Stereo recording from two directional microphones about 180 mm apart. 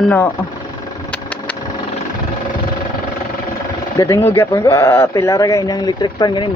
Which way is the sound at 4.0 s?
15° left (ahead or behind).